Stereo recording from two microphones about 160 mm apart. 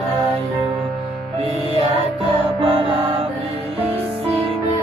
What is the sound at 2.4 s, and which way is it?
Music, 35° right (ahead or behind).